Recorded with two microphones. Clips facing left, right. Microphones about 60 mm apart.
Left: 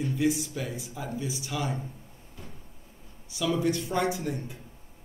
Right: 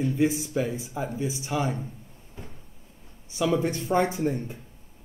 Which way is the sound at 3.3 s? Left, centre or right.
Right.